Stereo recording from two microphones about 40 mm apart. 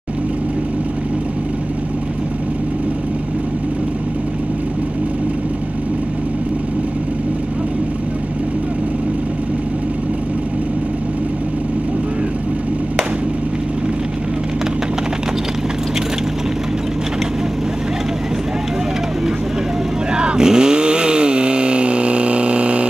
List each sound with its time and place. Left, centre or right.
20.1 s chainsaw: right